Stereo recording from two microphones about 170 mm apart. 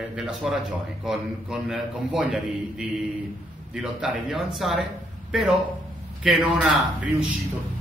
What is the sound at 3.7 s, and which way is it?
Speech, 5° right (ahead or behind).